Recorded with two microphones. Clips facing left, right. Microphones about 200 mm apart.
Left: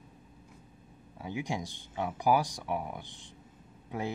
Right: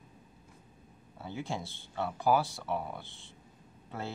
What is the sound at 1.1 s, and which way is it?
Speech, 15° left (ahead or behind).